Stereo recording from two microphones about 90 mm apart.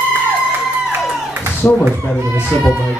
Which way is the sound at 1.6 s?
25° left (ahead or behind).